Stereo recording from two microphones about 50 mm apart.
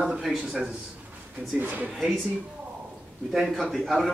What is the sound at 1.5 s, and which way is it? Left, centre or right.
Speech, right.